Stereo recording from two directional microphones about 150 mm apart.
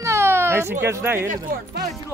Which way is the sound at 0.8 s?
15° right (ahead or behind).